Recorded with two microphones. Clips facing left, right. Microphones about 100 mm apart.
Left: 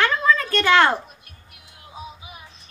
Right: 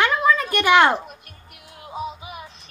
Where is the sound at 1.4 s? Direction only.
60° right (ahead or behind).